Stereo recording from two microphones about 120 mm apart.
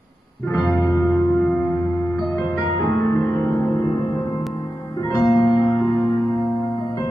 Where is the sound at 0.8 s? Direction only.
25° left (ahead or behind).